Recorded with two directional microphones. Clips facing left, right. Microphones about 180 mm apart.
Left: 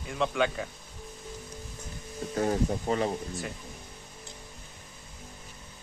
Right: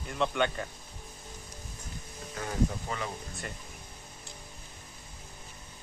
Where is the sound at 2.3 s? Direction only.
35° left (ahead or behind).